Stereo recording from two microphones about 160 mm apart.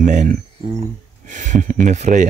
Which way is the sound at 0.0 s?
50° right (ahead or behind).